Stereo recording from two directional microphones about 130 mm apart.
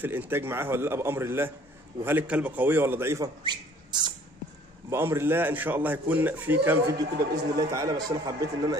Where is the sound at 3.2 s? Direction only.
35° right (ahead or behind).